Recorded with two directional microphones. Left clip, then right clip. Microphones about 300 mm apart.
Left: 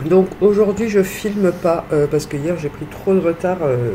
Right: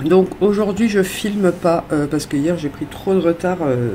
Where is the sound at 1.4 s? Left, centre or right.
Right.